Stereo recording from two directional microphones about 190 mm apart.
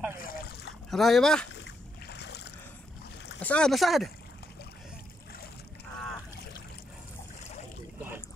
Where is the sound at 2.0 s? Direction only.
60° left (ahead or behind).